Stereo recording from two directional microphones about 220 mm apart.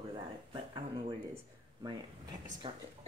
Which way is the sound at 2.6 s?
20° right (ahead or behind).